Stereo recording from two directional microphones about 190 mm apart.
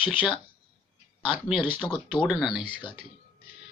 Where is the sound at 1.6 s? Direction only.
25° left (ahead or behind).